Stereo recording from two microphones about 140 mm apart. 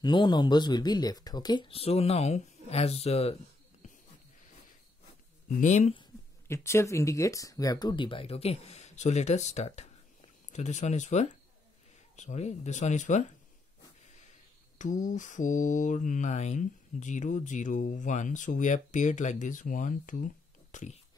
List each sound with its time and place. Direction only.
0.0 s speech: 30° left (ahead or behind)
5.6 s mantra: 60° left (ahead or behind)
6.4 s speech: 20° left (ahead or behind); by 9.8 s 50° left (ahead or behind)
10.5 s mantra: 55° left (ahead or behind)
14.8 s mantra: 65° left (ahead or behind)